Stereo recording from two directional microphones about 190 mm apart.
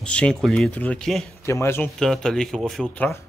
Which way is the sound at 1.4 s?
15° left (ahead or behind).